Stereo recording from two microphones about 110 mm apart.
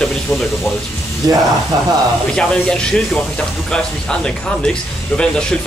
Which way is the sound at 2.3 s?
5° left (ahead or behind).